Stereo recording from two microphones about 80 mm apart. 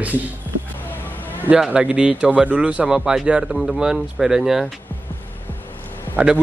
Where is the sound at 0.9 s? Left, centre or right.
Left.